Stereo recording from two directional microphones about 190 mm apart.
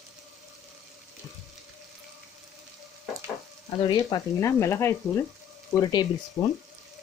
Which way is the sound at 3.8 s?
25° left (ahead or behind).